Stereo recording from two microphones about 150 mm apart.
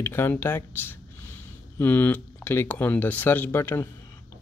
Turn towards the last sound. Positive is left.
turn(degrees=15)  # may be behind; listen again after turning